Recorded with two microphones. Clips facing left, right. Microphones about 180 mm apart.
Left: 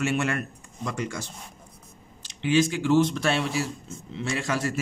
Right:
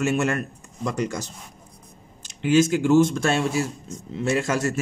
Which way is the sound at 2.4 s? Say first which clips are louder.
Right 4 dB; 45° right (ahead or behind).